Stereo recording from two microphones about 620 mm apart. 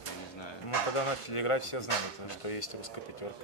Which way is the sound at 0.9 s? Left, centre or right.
Left.